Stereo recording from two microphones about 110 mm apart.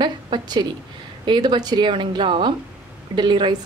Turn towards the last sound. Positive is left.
turn(degrees=-45)  # may be behind; listen again after turning